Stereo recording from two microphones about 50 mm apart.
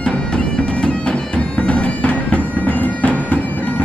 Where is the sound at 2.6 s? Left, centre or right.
Left.